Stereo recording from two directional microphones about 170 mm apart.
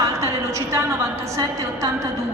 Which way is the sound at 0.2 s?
15° right (ahead or behind).